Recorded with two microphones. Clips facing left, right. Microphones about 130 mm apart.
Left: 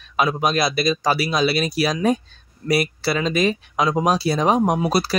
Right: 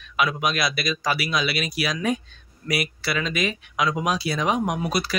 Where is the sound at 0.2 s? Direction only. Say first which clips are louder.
Left 4 dB; 35° left (ahead or behind).